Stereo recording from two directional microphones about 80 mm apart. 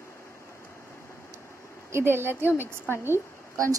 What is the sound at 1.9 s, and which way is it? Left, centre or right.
Speech, right.